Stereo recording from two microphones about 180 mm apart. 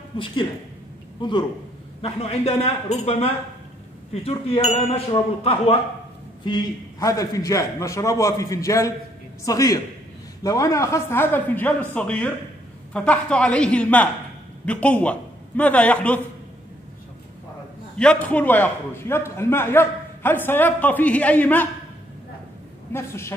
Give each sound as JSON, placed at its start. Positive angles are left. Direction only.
{"t": 1.2, "sound": "a man's voice", "side_deg": 25}
{"t": 17.9, "sound": "a man's voice", "side_deg": 5}
{"t": 22.9, "sound": "a man's voice", "side_deg": 15}